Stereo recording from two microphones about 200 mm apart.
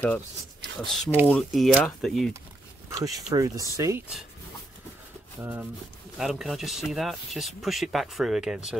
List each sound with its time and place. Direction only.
0.7 s speech: centre (ahead or behind)
2.9 s speech: 20° right (ahead or behind)
5.4 s speech: 10° right (ahead or behind)